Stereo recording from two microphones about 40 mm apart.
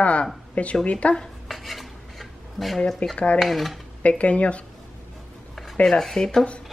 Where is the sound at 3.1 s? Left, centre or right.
Left.